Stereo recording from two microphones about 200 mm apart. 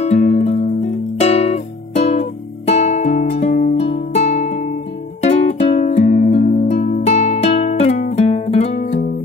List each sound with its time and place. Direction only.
0.0 s music: 35° left (ahead or behind)